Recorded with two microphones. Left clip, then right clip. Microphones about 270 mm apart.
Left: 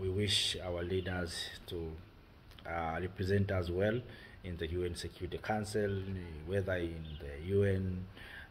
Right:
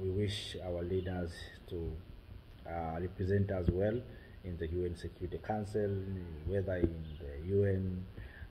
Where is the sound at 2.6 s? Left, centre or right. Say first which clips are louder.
Left 2 dB; centre.